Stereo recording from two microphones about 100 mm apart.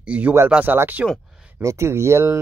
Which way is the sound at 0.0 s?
15° right (ahead or behind).